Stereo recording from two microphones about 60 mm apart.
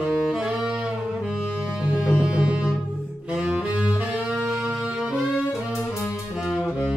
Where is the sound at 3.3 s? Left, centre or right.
Right.